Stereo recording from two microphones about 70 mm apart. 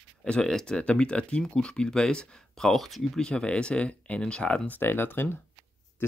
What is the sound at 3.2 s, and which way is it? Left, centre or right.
Speech, centre.